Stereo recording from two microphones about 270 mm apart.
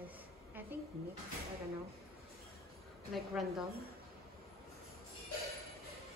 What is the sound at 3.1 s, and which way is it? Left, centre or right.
Speech, centre.